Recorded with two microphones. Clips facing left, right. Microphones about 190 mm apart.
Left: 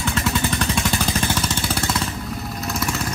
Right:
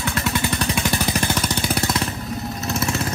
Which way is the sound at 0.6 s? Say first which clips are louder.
Even; 15° right (ahead or behind).